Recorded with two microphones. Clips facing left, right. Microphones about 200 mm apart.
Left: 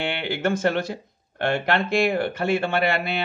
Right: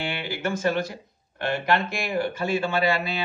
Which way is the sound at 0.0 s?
60° left (ahead or behind).